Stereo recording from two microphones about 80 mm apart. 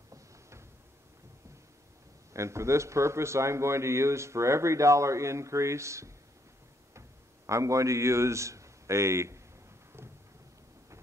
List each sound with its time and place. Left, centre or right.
0.1 s cupboard open or close: right
2.3 s a man's voice: right
6.9 s a sound: right